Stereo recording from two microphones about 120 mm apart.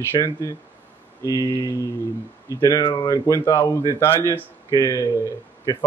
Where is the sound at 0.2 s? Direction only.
25° left (ahead or behind).